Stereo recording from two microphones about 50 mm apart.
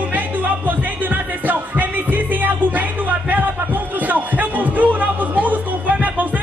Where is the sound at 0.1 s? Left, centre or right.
Right.